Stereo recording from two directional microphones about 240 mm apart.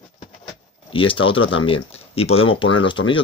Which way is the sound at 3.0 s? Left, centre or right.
Left.